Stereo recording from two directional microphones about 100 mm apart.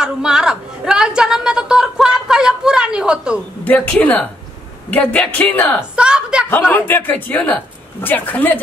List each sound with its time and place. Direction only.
0.0 s a sound: 5° right (ahead or behind)
3.6 s a man's voice: 10° left (ahead or behind)
5.9 s a woman's voice: 10° right (ahead or behind)
6.7 s a man's voice: 20° left (ahead or behind)